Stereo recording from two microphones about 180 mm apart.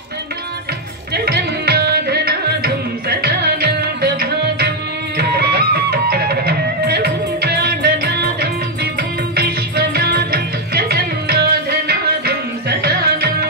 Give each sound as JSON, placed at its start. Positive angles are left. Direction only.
{"t": 1.1, "sound": "music", "side_deg": -60}